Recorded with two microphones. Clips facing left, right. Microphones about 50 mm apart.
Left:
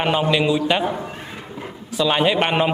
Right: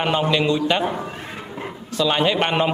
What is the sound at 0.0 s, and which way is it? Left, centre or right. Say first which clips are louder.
Speech: left 1 dB; centre.